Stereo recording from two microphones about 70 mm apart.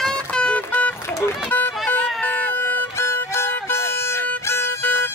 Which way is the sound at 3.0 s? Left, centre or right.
Left.